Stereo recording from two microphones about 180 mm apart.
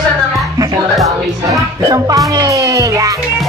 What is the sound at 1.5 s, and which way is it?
Music, 20° right (ahead or behind).